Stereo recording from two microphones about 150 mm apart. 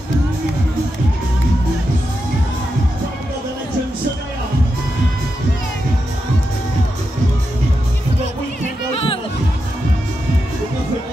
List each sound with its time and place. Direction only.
8.9 s music: 40° left (ahead or behind)